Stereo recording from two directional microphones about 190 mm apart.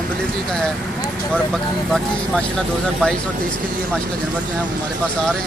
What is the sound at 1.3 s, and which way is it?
Speech, 5° left (ahead or behind).